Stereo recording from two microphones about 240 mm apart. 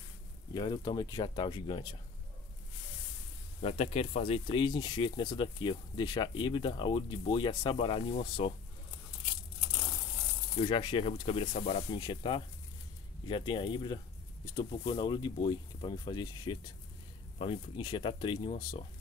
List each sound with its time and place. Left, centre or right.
0.6 s speech: centre
3.6 s speech: left
10.6 s speech: left